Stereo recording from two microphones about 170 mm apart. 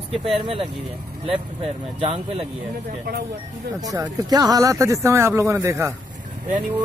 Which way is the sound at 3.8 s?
20° right (ahead or behind).